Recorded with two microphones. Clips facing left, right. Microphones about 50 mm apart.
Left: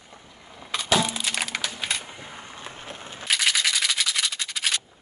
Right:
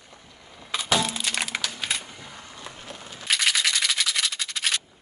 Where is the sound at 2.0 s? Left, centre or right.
Left.